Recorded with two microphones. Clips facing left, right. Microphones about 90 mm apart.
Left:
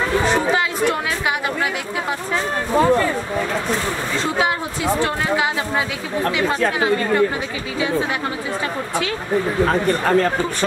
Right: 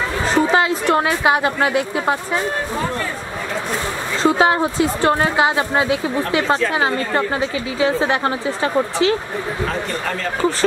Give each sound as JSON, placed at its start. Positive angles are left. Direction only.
{"t": 1.2, "sound": "speech", "side_deg": -30}
{"t": 4.2, "sound": "a woman's voice", "side_deg": -35}
{"t": 9.7, "sound": "speech", "side_deg": 40}